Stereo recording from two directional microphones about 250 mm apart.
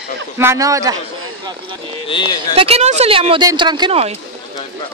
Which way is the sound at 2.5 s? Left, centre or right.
Right.